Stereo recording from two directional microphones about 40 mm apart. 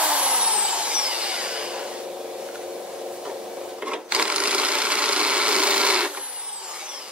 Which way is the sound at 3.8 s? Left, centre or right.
Right.